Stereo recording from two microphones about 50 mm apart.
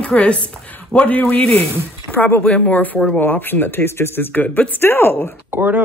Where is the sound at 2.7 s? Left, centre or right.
Left.